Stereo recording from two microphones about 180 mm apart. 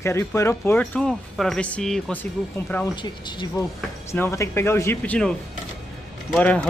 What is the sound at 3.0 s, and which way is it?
Speech, 25° left (ahead or behind).